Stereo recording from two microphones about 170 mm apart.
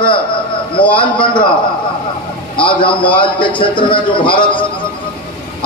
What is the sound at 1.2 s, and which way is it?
Speech, 30° left (ahead or behind).